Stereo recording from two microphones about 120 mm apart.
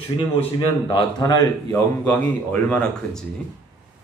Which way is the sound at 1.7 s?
15° left (ahead or behind).